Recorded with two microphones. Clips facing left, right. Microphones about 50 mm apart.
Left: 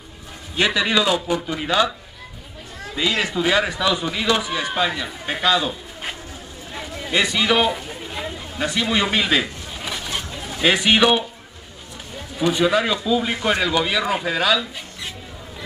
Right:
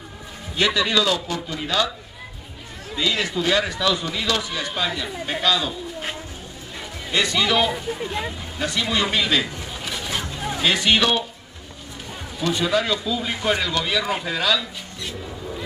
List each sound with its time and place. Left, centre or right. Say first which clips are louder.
0.6 s speech: left 1 dB; centre
3.0 s speech: left 2 dB; centre
6.7 s a sound: left 3 dB; centre
7.7 s speech: right 3 dB; centre
8.5 s a man's voice: left 2 dB; centre
12.4 s speech: left 3 dB; centre